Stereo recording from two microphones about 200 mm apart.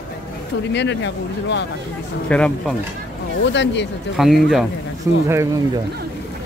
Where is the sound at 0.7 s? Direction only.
60° left (ahead or behind).